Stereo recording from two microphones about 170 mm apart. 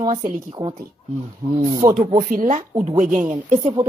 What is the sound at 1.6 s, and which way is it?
Speech, 25° right (ahead or behind).